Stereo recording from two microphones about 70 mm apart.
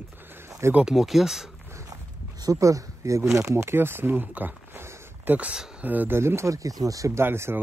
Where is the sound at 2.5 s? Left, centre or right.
Right.